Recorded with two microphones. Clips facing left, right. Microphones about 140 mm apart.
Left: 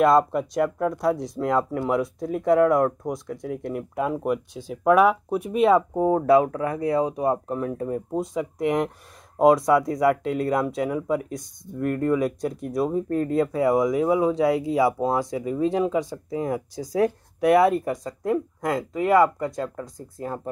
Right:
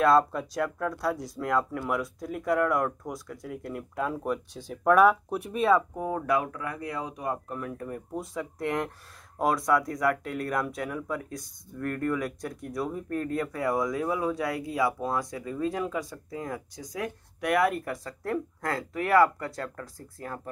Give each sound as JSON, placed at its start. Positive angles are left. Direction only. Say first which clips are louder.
{"t": 0.0, "sound": "speech", "louder": "left 4 dB", "side_deg": 15}